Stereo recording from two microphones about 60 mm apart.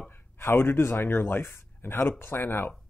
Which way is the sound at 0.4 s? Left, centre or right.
Left.